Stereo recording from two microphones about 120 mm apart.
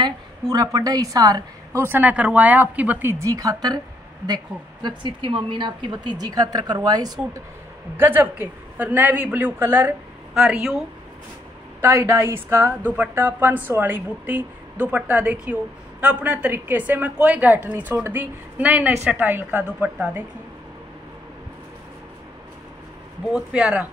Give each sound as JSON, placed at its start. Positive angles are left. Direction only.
{"t": 0.0, "sound": "a woman's voice", "side_deg": -30}
{"t": 4.8, "sound": "a woman's voice", "side_deg": -40}
{"t": 8.0, "sound": "a woman's voice", "side_deg": -15}
{"t": 10.3, "sound": "speech", "side_deg": -5}
{"t": 11.8, "sound": "a woman's voice", "side_deg": -20}
{"t": 23.3, "sound": "a woman's voice", "side_deg": -10}